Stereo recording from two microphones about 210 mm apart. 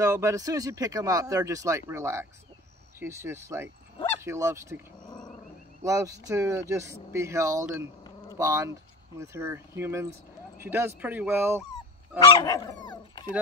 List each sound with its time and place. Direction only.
0.0 s speech: 15° right (ahead or behind)
5.9 s speech: 15° right (ahead or behind)
12.1 s dog: 5° right (ahead or behind)
12.4 s dog: 20° left (ahead or behind)